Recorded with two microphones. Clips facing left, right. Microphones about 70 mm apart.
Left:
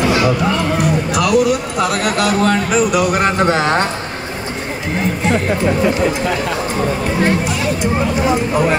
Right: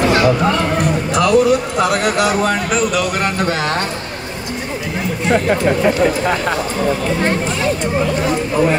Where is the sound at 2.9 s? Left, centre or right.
Left.